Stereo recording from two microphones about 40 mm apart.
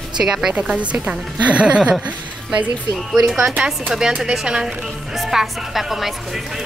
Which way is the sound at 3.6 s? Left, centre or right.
Centre.